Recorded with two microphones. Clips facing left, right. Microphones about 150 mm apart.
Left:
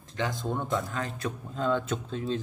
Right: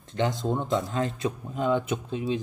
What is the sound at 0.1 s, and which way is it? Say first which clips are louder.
Speech: right 4 dB; 25° right (ahead or behind).